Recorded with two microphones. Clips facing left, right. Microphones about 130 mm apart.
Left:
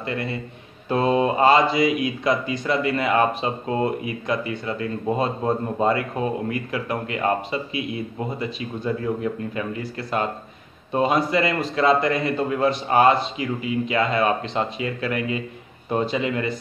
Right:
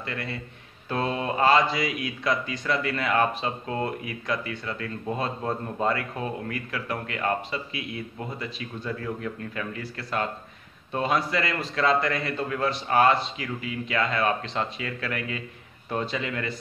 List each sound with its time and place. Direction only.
0.0 s speech: 20° left (ahead or behind)